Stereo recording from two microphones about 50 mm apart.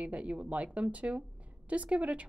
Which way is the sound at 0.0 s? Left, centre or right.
Right.